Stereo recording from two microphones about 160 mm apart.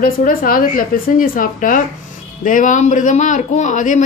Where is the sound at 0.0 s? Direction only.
60° left (ahead or behind).